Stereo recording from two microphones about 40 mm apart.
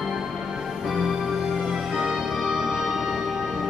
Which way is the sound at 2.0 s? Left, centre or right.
Centre.